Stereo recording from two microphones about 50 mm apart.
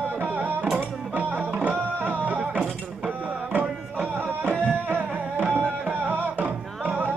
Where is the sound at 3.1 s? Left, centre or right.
Right.